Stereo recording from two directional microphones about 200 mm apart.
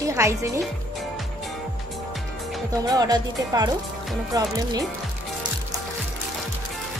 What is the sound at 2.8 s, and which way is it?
Speech, 20° right (ahead or behind).